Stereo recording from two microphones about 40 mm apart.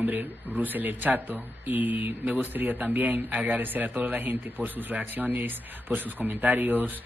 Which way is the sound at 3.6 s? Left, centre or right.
Right.